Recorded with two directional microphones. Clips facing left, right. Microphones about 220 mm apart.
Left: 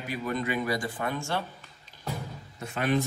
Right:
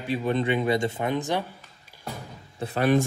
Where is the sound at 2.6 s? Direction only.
35° right (ahead or behind).